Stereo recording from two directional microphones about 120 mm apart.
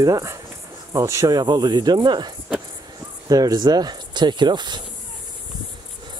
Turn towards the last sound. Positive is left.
turn(degrees=-40)  # may be behind; listen again after turning